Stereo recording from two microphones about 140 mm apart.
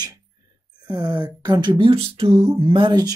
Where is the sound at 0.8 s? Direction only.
30° right (ahead or behind).